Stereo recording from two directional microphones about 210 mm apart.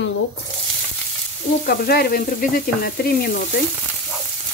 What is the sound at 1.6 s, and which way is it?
A woman's voice, 50° left (ahead or behind).